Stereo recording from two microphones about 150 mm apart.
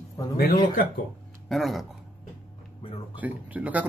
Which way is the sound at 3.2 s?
10° right (ahead or behind).